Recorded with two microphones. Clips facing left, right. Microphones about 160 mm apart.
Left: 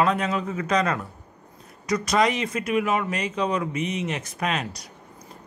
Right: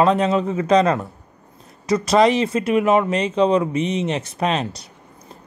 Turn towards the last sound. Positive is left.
turn(degrees=-30)  # may be behind; listen again after turning